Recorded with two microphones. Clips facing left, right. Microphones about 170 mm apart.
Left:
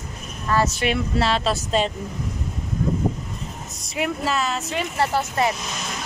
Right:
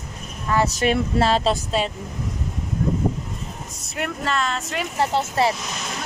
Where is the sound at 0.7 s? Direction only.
40° right (ahead or behind).